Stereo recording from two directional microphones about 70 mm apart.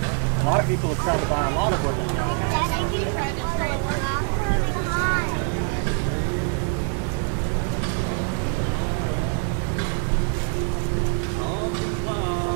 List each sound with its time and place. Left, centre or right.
0.5 s speech: right